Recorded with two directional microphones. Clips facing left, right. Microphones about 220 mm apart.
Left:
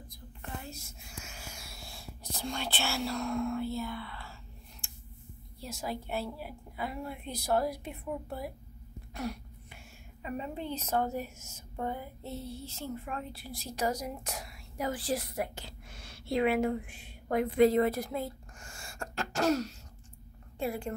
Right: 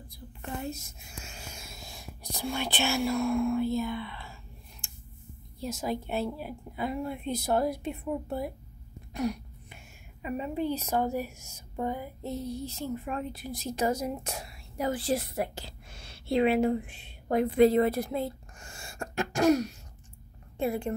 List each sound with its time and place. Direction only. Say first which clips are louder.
0.7 s speech: right 8 dB; 25° right (ahead or behind)
5.6 s a woman's voice: right 6 dB; 20° right (ahead or behind)
9.1 s throat clearing: right 6 dB; 15° right (ahead or behind)
10.2 s a woman's voice: right 6 dB; 15° right (ahead or behind)